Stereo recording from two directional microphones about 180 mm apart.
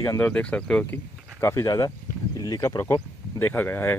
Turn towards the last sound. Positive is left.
turn(degrees=10)  # may be behind; listen again after turning